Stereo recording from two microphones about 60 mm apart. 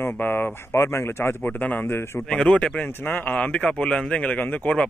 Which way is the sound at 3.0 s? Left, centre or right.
Left.